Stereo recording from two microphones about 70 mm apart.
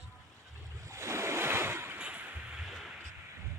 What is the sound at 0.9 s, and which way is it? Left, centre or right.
Waves, right.